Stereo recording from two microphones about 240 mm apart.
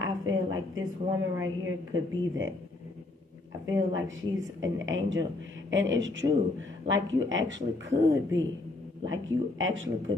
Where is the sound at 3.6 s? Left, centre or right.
Right.